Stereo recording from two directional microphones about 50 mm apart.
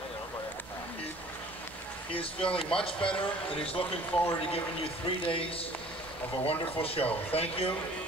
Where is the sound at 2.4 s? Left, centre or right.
Centre.